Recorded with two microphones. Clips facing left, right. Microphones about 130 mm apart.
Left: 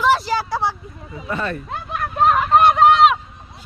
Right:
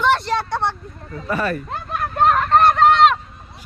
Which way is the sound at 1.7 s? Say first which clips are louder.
Right 1 dB; centre (ahead or behind).